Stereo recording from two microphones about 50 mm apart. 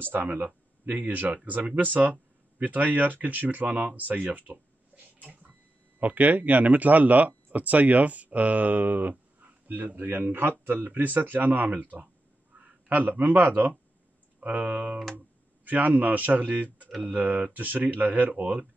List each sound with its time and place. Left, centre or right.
0.0 s speech: right
0.8 s speech: right